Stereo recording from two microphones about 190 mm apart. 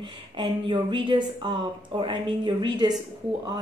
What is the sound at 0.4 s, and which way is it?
Speech, 25° right (ahead or behind).